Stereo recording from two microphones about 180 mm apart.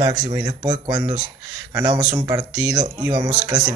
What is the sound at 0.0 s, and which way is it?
A man's voice, 20° right (ahead or behind).